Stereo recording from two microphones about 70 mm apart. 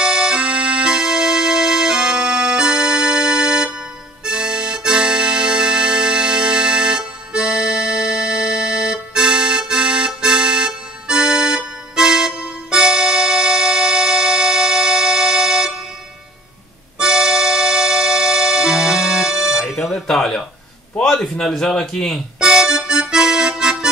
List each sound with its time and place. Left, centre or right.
0.0 s keyboard: centre
4.2 s accordion: centre
17.0 s music: centre
19.7 s alarm: centre
21.0 s a man's voice: centre
22.4 s music: centre